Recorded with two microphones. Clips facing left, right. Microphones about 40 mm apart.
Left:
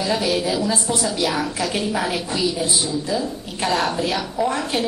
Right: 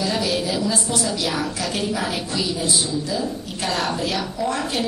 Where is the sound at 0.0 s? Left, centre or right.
Centre.